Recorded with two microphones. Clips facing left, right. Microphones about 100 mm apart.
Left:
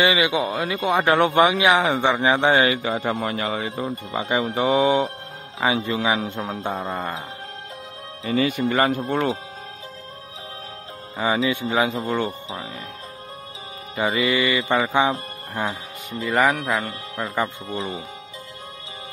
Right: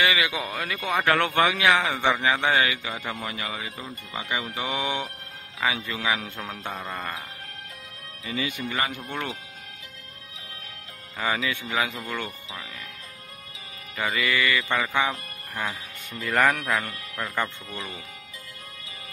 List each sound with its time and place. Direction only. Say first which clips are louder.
0.0 s a man's voice: left 5 dB; 20° left (ahead or behind)
8.2 s speech: left 9 dB; 40° left (ahead or behind)
11.1 s a man's voice: left 6 dB; 25° left (ahead or behind)
13.9 s a man's voice: left 5 dB; 25° left (ahead or behind)
16.3 s speech: left 3 dB; 5° left (ahead or behind)
16.7 s a man's voice: left 3 dB; 30° left (ahead or behind)